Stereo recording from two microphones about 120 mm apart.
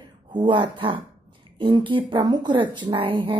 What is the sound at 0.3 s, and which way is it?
Speech, 40° right (ahead or behind).